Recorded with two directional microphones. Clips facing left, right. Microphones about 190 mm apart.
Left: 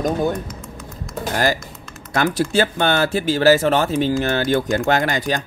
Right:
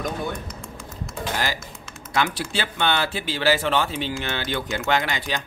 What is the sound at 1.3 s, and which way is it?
Speech, 45° left (ahead or behind).